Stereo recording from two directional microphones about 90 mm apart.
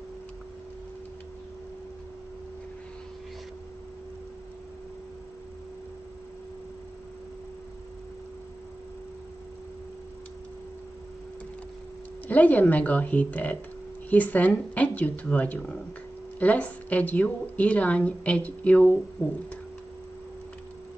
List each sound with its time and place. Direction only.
12.3 s a woman's voice: 15° left (ahead or behind)